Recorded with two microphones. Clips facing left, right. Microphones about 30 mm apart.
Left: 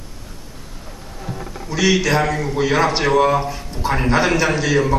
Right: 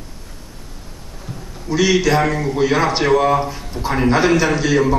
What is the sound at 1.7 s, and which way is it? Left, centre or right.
Speech, centre.